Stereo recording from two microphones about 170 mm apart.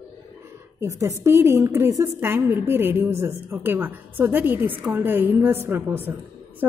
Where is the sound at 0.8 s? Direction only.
15° right (ahead or behind).